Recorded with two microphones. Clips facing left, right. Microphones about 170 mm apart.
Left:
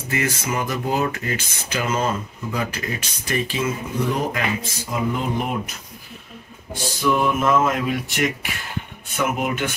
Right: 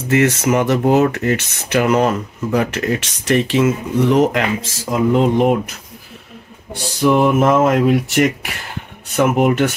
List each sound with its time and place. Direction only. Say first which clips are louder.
0.1 s speech: right 10 dB; 80° right
6.7 s speech: right 6 dB; 70° right (ahead or behind)
9.1 s speech: right 9 dB; 70° right (ahead or behind)